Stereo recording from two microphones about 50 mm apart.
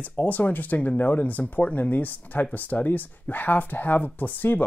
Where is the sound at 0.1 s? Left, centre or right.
Left.